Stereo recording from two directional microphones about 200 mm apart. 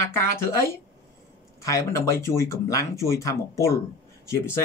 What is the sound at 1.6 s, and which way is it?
Speech, 15° left (ahead or behind).